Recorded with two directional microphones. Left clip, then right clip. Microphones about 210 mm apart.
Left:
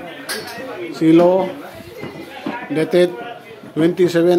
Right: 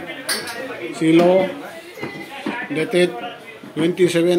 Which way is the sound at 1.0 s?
10° left (ahead or behind).